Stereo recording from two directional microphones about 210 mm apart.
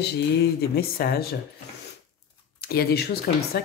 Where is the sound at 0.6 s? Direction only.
45° left (ahead or behind).